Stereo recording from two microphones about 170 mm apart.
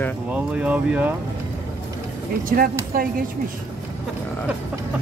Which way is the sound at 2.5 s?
55° right (ahead or behind).